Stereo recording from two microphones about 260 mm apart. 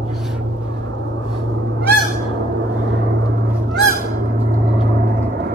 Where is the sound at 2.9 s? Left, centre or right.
Right.